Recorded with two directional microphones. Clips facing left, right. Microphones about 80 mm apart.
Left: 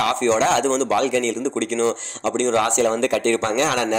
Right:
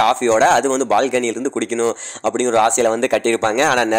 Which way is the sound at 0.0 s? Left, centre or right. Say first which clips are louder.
Right 5 dB; right.